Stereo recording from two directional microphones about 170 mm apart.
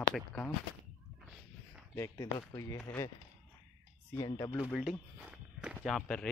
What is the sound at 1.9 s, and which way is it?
Speech, 15° left (ahead or behind).